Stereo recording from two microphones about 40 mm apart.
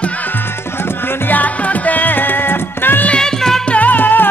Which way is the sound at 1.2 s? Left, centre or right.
Left.